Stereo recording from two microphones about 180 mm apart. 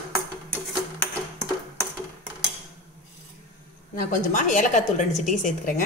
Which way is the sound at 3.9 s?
50° left (ahead or behind).